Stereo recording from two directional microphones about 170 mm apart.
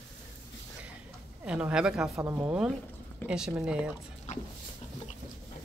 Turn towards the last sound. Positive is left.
turn(degrees=45)  # may be behind; listen again after turning